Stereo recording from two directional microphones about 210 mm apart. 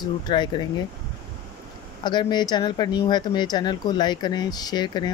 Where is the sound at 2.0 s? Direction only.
20° left (ahead or behind).